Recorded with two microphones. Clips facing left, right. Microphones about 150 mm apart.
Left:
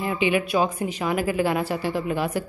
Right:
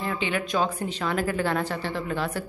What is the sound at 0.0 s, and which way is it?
Speech, 15° left (ahead or behind).